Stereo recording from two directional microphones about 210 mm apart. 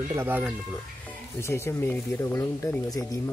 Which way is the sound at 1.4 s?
10° left (ahead or behind).